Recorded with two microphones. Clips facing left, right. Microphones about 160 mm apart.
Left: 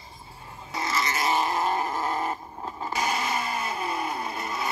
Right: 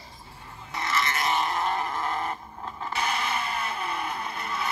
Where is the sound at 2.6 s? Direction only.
35° left (ahead or behind).